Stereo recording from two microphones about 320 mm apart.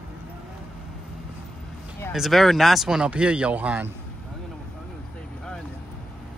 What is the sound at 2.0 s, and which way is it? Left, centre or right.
Speech, centre.